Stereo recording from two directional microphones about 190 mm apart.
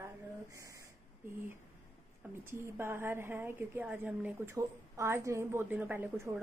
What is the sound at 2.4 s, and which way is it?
A woman's voice, 15° right (ahead or behind).